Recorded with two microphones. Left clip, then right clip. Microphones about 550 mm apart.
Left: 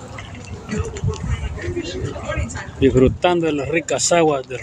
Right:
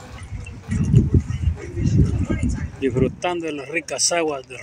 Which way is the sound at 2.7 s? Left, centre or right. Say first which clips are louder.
Left 7 dB; right.